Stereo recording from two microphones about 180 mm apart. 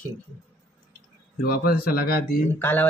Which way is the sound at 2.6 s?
10° left (ahead or behind).